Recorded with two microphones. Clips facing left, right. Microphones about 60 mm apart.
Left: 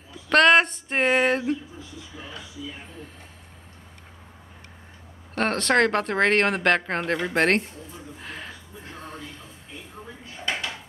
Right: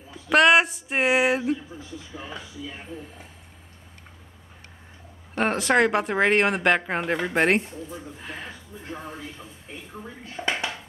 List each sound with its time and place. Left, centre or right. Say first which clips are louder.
0.3 s a sound: even; centre
5.3 s speech: even; centre
10.4 s speech: right 2 dB; right